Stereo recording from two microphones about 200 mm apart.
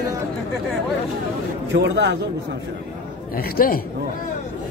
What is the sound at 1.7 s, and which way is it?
Speech, 60° right (ahead or behind).